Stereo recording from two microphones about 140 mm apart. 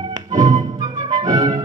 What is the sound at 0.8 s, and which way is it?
Music, 30° right (ahead or behind).